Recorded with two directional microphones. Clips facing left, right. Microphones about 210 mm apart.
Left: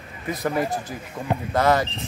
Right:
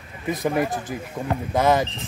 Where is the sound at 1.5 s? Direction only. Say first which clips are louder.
Right 1 dB; 20° right (ahead or behind).